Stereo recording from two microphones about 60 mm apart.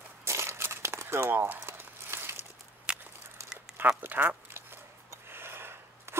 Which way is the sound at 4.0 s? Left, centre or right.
Right.